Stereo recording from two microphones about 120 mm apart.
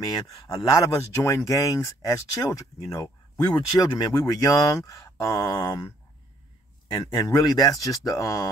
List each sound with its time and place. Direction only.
0.1 s speech: 30° left (ahead or behind)
7.2 s speech: 30° left (ahead or behind)